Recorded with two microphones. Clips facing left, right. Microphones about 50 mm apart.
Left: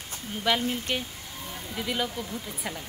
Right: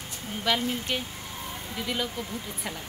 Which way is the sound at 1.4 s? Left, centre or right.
Right.